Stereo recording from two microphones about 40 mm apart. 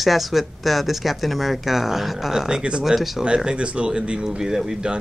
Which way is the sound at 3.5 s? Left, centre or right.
Right.